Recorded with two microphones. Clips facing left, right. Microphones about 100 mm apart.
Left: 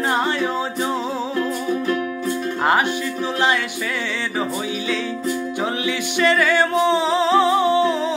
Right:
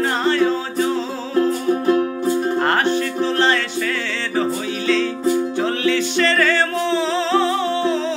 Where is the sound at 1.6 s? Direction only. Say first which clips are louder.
Right 5 dB; 35° right (ahead or behind).